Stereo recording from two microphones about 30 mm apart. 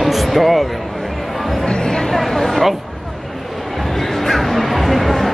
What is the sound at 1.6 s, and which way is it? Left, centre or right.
Music, left.